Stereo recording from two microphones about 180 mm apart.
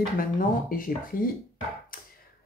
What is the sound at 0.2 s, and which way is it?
Speech, 50° left (ahead or behind).